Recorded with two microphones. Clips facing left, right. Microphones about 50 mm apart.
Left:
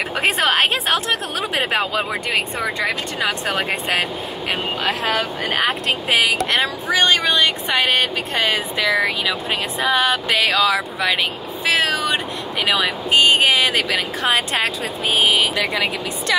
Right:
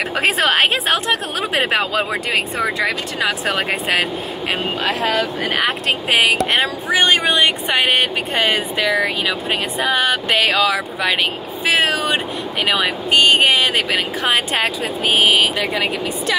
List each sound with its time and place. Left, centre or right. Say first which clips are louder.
0.8 s speech: right 2 dB; centre
3.3 s speech: right 2 dB; right
5.6 s speech: even; centre
6.4 s speech: right 2 dB; centre
10.3 s speech: right 1 dB; centre
12.6 s speech: right 1 dB; centre
13.1 s speech: right 1 dB; centre
13.8 s speech: right 1 dB; centre
15.1 s speech: right 2 dB; right
15.5 s speech: right 1 dB; centre